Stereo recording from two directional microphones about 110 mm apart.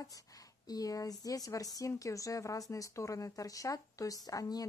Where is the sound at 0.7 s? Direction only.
35° left (ahead or behind).